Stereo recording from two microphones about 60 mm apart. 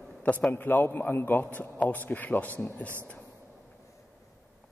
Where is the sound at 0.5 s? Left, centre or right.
Left.